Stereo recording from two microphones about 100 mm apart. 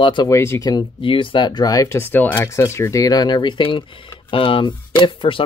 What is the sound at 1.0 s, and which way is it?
Speech, 60° left (ahead or behind).